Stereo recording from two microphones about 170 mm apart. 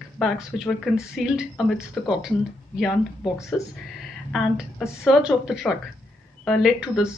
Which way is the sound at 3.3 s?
15° left (ahead or behind).